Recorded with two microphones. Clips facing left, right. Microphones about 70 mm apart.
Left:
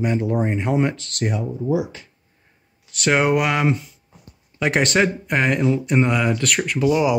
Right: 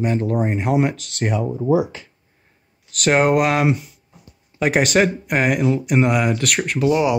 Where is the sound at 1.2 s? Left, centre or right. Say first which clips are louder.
Right 3 dB; right.